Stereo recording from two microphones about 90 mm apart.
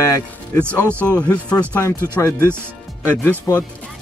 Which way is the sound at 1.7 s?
30° left (ahead or behind).